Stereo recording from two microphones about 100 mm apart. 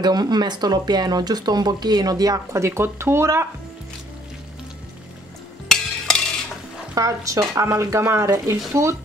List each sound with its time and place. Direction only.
0.0 s speech: 45° right (ahead or behind); by 3.4 s 25° right (ahead or behind)
5.7 s cutlery: 5° left (ahead or behind)
7.0 s speech: 35° right (ahead or behind)